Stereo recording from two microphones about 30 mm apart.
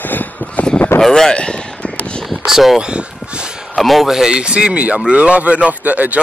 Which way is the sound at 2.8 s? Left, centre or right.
Right.